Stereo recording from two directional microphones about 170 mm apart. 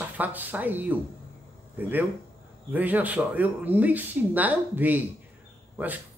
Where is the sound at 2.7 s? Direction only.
10° right (ahead or behind).